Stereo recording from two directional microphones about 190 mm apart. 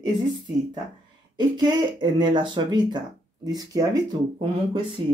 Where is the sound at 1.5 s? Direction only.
20° right (ahead or behind).